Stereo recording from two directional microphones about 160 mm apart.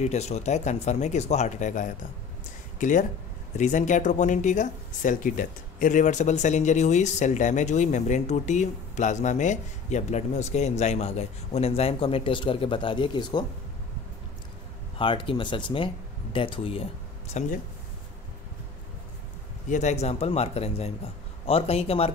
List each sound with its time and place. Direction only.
0.0 s speech: 45° left (ahead or behind); by 13.5 s 25° left (ahead or behind)
15.0 s speech: 30° left (ahead or behind)
19.7 s speech: 45° left (ahead or behind)